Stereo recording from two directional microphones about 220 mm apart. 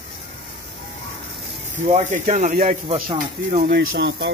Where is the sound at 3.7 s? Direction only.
50° right (ahead or behind).